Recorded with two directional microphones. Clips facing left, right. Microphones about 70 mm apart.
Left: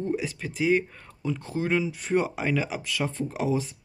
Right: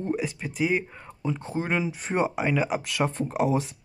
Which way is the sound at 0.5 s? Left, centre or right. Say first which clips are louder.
Left 3 dB; centre.